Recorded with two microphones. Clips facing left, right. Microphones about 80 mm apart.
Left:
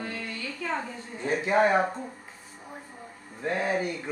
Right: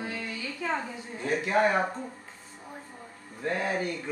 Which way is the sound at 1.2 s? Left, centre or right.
Centre.